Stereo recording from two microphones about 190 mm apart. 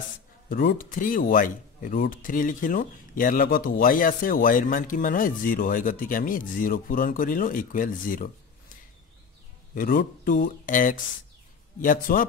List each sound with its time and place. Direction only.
0.5 s speech: 50° left (ahead or behind)
9.8 s speech: 50° left (ahead or behind)